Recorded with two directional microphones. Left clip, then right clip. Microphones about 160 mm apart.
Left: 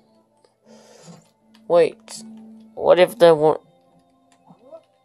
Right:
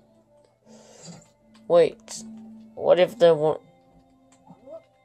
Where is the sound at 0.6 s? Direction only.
15° left (ahead or behind).